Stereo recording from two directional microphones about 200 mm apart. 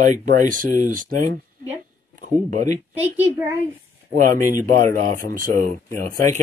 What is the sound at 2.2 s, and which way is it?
Speech, 40° right (ahead or behind).